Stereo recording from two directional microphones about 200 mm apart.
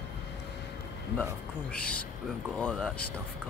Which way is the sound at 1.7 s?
5° left (ahead or behind).